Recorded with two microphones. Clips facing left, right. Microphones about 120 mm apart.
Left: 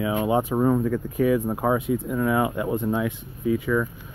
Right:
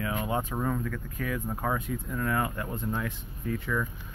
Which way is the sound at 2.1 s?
15° left (ahead or behind).